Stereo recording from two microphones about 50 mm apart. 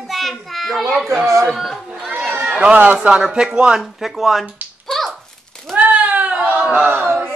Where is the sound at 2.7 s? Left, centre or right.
Right.